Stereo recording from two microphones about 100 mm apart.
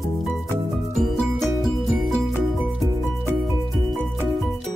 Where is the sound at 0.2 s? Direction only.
Centre (ahead or behind).